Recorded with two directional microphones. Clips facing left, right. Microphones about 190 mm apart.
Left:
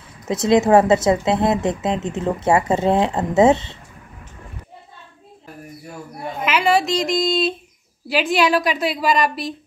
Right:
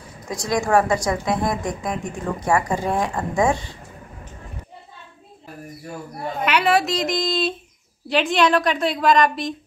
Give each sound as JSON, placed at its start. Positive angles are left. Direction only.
{"t": 0.3, "sound": "a woman's voice", "side_deg": 25}
{"t": 6.4, "sound": "a woman's voice", "side_deg": 0}